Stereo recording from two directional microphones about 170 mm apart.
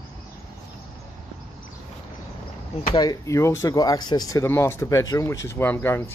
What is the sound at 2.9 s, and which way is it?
Speech, 20° left (ahead or behind).